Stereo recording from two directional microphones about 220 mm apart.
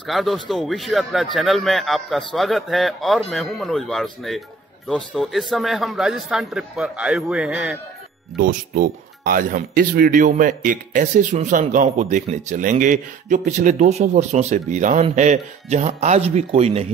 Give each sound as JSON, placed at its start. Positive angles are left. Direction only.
{"t": 0.0, "sound": "a man's voice", "side_deg": 0}
{"t": 8.4, "sound": "speech", "side_deg": -40}